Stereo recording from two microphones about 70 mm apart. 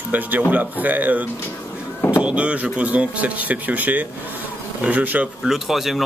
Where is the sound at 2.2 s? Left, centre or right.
Centre.